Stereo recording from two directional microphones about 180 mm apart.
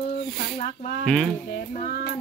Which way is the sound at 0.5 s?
40° left (ahead or behind).